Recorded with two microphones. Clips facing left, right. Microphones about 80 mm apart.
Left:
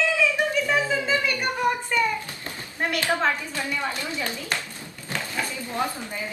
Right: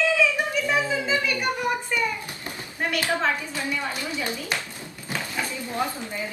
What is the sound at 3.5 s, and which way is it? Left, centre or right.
Speech, centre.